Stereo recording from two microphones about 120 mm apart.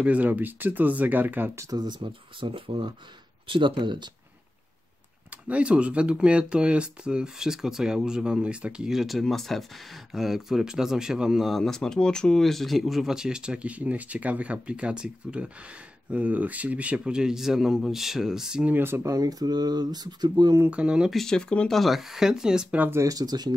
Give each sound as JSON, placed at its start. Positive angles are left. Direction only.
{"t": 0.0, "sound": "speech", "side_deg": -10}
{"t": 1.8, "sound": "speech", "side_deg": -40}
{"t": 5.3, "sound": "speech", "side_deg": -10}
{"t": 19.1, "sound": "speech", "side_deg": -30}
{"t": 20.6, "sound": "speech", "side_deg": -10}